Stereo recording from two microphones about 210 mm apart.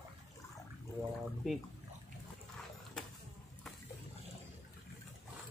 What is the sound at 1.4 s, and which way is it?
Speech, centre (ahead or behind).